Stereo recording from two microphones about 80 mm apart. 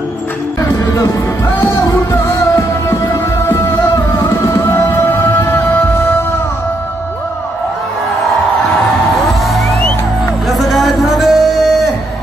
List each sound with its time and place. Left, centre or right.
0.6 s music: left
4.7 s music: left
9.5 s music: centre